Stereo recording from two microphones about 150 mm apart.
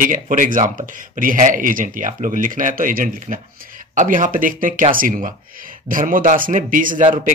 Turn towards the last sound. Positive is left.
turn(degrees=-60)  # may be behind; listen again after turning